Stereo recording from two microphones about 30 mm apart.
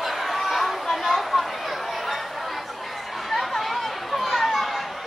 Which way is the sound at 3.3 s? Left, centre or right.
Centre.